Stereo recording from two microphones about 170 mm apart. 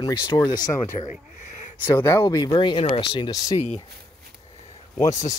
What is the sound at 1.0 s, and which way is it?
Speech, 45° left (ahead or behind).